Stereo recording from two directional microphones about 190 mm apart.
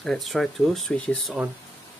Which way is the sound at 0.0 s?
Centre (ahead or behind).